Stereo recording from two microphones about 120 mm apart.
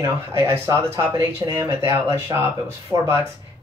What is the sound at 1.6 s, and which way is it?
Speech, 25° right (ahead or behind).